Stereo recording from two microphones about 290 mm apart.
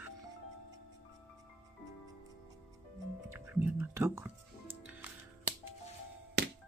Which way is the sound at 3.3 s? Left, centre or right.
Centre.